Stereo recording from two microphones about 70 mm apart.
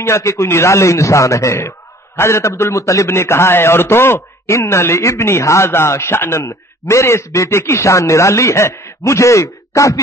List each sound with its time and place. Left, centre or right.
0.0 s a man's voice: left